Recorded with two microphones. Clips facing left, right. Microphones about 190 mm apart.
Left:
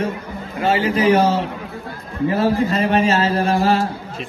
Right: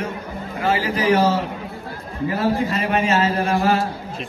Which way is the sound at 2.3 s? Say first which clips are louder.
Left 3 dB; 30° left (ahead or behind).